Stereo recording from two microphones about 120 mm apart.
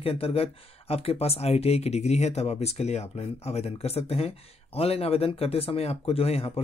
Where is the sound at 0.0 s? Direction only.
55° left (ahead or behind).